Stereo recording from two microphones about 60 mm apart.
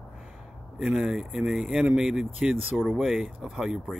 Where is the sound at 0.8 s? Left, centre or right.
Centre.